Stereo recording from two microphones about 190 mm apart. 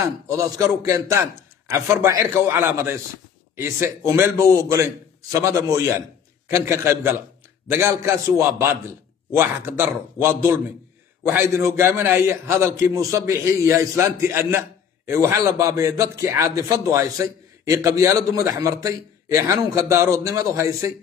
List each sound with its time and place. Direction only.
0.0 s a man's voice: 15° right (ahead or behind)